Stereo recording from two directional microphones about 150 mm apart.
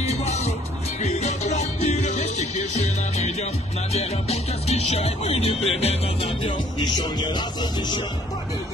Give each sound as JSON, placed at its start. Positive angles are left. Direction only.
{"t": 0.0, "sound": "music", "side_deg": 45}
{"t": 3.9, "sound": "speech", "side_deg": 45}